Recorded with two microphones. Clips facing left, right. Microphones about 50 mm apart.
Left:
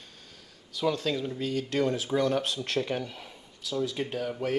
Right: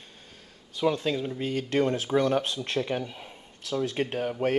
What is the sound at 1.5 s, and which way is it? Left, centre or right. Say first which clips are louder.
Speech: right 2 dB; right.